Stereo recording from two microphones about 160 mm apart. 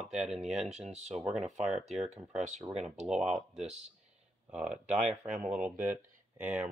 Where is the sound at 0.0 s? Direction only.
5° right (ahead or behind).